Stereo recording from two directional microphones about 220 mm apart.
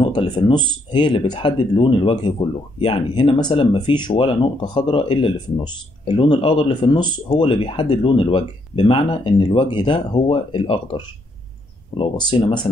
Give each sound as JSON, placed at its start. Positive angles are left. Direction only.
{"t": 0.0, "sound": "speech", "side_deg": 20}